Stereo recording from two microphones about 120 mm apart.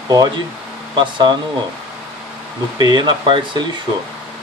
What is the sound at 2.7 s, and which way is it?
Speech, 40° right (ahead or behind).